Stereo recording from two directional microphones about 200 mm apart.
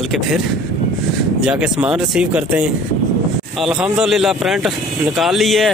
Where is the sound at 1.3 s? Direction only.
5° right (ahead or behind).